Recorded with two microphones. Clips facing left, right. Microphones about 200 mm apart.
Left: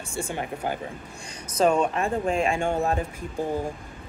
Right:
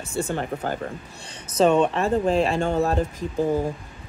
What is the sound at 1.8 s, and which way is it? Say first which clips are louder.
Speech: right 4 dB; 35° right (ahead or behind).